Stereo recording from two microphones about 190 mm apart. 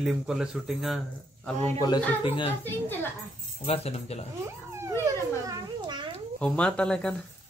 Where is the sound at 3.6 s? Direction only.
30° left (ahead or behind).